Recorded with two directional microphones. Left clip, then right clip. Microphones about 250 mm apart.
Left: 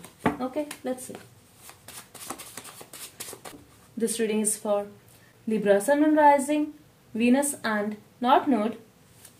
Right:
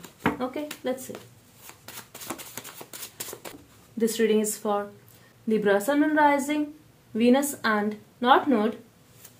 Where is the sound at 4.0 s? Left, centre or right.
Right.